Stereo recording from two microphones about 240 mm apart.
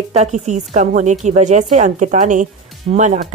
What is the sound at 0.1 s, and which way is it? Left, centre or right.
Speech, right.